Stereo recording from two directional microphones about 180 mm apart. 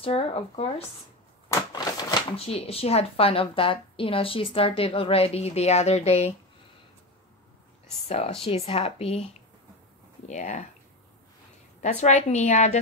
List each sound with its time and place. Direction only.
0.0 s speech: 35° left (ahead or behind)
1.5 s speech: 20° left (ahead or behind)
8.1 s speech: 35° left (ahead or behind)
10.2 s speech: 45° left (ahead or behind)
11.8 s speech: 40° left (ahead or behind)